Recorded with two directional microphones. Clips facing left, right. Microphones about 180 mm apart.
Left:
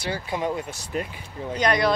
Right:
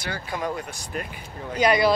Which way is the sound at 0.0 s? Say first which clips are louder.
Left 3 dB; 25° left (ahead or behind).